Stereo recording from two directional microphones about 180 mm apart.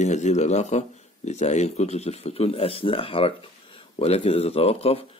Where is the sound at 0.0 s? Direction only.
40° left (ahead or behind).